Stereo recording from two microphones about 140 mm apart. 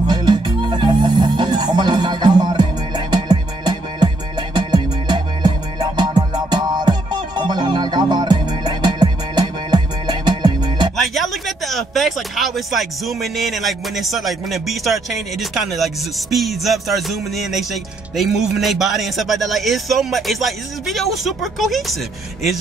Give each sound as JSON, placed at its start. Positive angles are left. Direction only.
{"t": 0.0, "sound": "music", "side_deg": -30}
{"t": 11.0, "sound": "a man's voice", "side_deg": 0}